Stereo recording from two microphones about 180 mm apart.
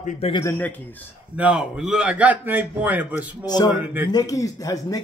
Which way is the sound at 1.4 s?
5° right (ahead or behind).